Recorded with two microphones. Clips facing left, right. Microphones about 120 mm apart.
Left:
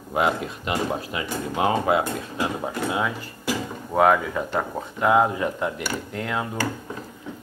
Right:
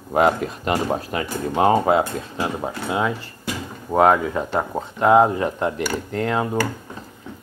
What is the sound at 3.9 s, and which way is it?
Speech, 25° right (ahead or behind).